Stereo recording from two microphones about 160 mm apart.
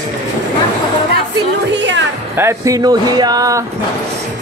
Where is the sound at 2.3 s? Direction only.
20° right (ahead or behind).